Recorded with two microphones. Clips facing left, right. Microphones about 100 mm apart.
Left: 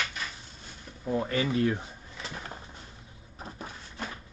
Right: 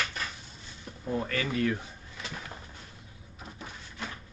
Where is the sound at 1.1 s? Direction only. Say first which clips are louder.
Left 3 dB; 20° left (ahead or behind).